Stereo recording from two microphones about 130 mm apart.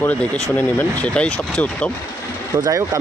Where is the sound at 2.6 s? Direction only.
25° right (ahead or behind).